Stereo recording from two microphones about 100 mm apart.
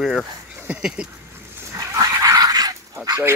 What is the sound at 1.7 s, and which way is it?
Dog, 35° right (ahead or behind).